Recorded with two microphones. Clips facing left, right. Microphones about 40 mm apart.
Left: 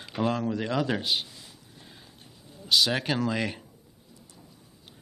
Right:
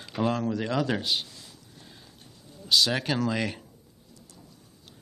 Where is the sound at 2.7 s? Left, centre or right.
Centre.